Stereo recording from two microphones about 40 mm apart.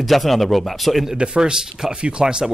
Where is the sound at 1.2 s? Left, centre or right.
Right.